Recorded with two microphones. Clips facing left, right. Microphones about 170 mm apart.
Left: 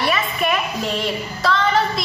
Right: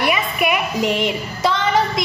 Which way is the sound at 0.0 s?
15° right (ahead or behind).